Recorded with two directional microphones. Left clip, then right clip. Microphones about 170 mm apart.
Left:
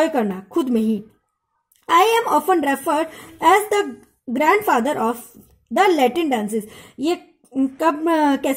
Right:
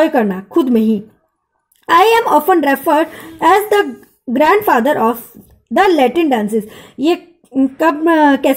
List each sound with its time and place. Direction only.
0.0 s a woman's voice: centre (ahead or behind)